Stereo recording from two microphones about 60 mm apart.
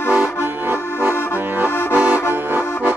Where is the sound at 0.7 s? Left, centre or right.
Right.